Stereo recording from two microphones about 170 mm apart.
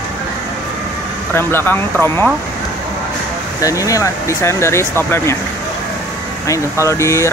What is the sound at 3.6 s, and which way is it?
Speech, 20° left (ahead or behind).